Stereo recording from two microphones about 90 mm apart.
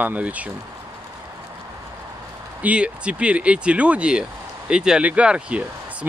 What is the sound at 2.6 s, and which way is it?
Speech, 15° right (ahead or behind).